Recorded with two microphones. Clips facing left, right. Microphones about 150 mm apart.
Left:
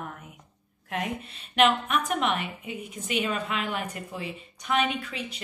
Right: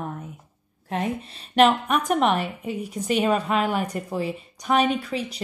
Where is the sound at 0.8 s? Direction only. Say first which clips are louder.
Right 5 dB; 35° right (ahead or behind).